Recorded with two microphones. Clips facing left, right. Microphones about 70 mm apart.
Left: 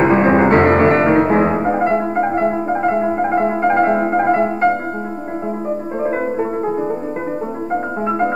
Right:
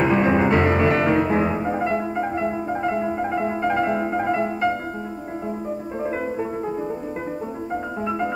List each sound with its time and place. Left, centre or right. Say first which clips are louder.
0.0 s music: left 6 dB; left